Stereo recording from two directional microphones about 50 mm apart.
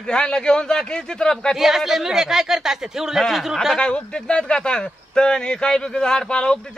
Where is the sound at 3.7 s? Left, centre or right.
Centre.